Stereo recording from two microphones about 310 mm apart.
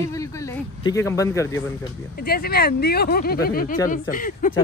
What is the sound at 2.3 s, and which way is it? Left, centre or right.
Speech, left.